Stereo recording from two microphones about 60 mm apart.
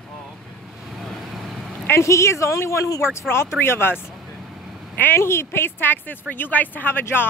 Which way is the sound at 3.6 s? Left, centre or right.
Left.